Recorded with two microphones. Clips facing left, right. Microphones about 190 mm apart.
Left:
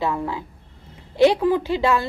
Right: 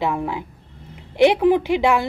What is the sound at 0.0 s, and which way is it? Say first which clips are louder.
A woman's voice: right 1 dB; 15° right (ahead or behind).